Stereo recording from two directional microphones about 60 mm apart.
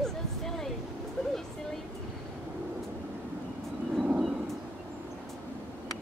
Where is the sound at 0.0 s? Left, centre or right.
Centre.